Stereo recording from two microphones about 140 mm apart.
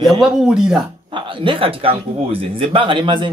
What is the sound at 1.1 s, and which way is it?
A man's voice, 35° right (ahead or behind).